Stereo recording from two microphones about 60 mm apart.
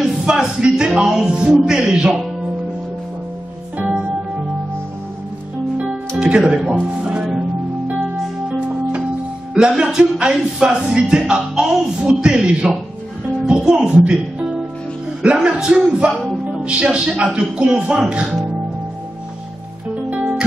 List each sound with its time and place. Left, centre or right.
0.0 s speech: centre
5.9 s speech: centre
7.9 s music: centre
9.5 s speech: centre
15.2 s speech: centre
20.1 s music: centre